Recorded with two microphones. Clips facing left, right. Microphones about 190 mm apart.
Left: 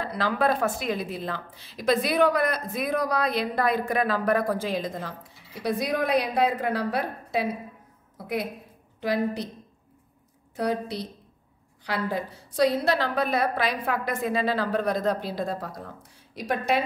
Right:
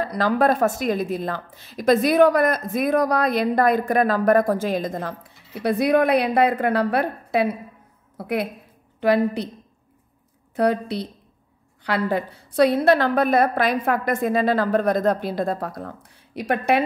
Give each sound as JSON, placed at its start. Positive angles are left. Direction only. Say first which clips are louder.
{"t": 0.0, "sound": "a woman's voice", "louder": "right 5 dB", "side_deg": -45}
{"t": 10.5, "sound": "a woman's voice", "louder": "right 6 dB", "side_deg": -60}